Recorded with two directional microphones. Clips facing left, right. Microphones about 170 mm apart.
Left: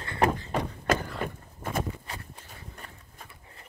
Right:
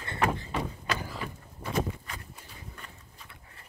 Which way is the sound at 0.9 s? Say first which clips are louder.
Left 8 dB; 45° left (ahead or behind).